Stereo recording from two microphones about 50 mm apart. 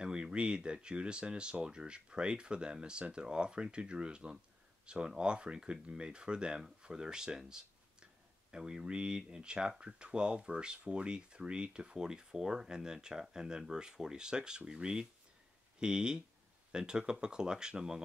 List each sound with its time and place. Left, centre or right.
0.0 s speech: right